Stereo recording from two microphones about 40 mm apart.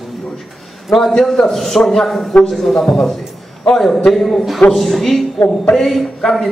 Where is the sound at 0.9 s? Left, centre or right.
Centre.